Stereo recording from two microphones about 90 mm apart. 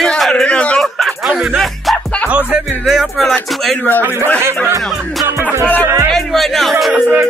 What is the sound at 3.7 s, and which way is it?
Speech, 20° left (ahead or behind).